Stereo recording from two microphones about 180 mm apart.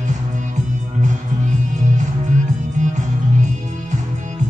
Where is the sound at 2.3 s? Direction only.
40° right (ahead or behind).